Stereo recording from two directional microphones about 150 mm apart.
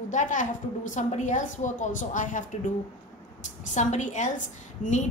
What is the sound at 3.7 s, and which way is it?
A woman's voice, 55° left (ahead or behind).